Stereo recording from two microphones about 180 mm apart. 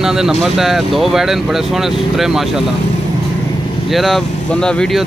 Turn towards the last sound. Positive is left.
turn(degrees=0)  # may be behind; listen again after turning